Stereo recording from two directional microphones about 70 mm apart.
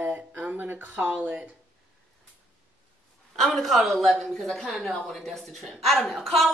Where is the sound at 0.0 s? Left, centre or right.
Right.